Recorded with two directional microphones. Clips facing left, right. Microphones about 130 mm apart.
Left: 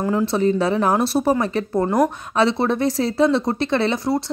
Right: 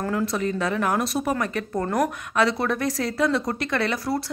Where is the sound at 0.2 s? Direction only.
30° left (ahead or behind).